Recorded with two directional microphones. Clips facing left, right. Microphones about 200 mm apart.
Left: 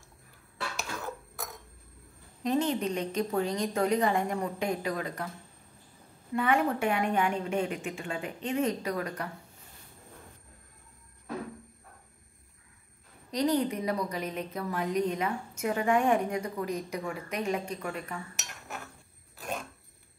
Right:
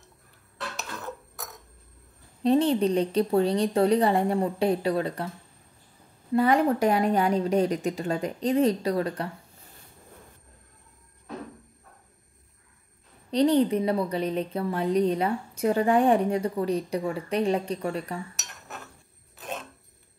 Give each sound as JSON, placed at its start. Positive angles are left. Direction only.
{"t": 0.6, "sound": "a sound", "side_deg": 0}
{"t": 2.4, "sound": "a woman's voice", "side_deg": -35}
{"t": 6.3, "sound": "a woman's voice", "side_deg": -35}
{"t": 13.3, "sound": "a woman's voice", "side_deg": -30}
{"t": 18.4, "sound": "cutlery", "side_deg": 0}
{"t": 19.3, "sound": "a sound", "side_deg": 0}